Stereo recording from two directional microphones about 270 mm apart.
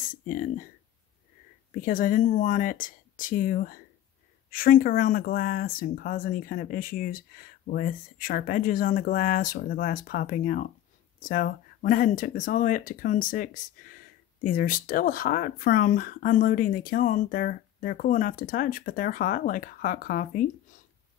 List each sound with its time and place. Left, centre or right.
0.1 s speech: left
1.7 s speech: left